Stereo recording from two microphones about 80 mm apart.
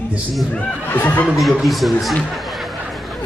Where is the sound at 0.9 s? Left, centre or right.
Left.